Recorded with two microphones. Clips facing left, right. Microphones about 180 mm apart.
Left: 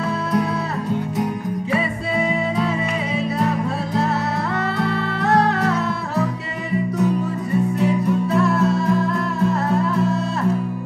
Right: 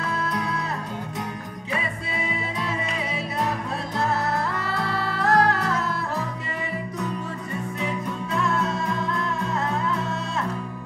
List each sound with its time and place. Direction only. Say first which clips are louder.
7.8 s music: left 10 dB; 5° left (ahead or behind)